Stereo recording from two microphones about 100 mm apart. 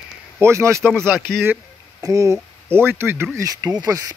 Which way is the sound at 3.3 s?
35° right (ahead or behind).